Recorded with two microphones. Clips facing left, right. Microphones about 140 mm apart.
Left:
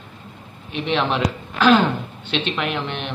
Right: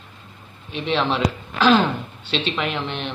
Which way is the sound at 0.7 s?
10° left (ahead or behind).